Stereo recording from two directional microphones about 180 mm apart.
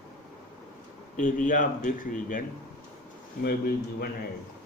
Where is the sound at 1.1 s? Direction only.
45° left (ahead or behind).